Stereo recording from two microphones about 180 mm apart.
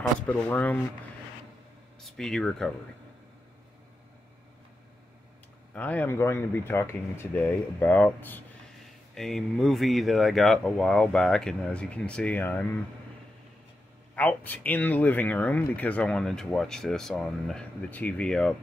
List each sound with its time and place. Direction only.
0.3 s speech: 10° left (ahead or behind)
2.0 s speech: centre (ahead or behind)
5.8 s speech: 10° left (ahead or behind)
14.1 s speech: 10° left (ahead or behind)